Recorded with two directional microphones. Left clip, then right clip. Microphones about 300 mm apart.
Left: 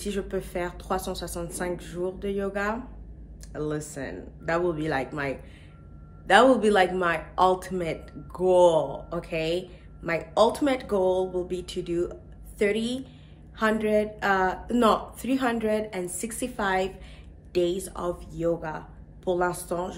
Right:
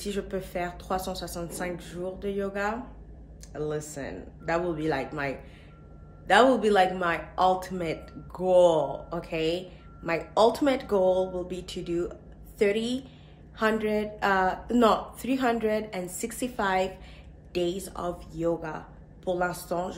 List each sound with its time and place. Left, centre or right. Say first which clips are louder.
0.0 s a man's voice: left 2 dB; centre